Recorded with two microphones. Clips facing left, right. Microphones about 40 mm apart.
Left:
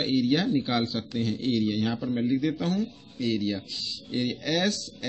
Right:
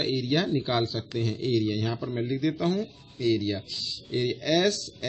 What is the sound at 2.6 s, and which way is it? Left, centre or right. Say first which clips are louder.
Speech: right 1 dB; right.